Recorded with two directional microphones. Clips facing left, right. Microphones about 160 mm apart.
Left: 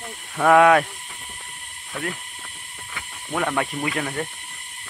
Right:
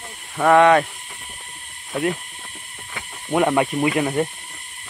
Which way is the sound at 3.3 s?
20° right (ahead or behind).